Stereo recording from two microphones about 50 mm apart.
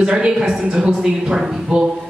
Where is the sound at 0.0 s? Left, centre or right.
Centre.